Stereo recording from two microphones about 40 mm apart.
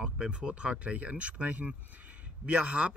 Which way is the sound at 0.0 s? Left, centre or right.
Right.